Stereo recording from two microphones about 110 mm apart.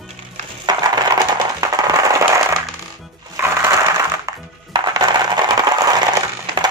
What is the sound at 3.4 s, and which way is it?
Crushing, 20° right (ahead or behind).